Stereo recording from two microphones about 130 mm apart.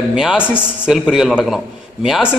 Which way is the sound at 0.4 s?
15° left (ahead or behind).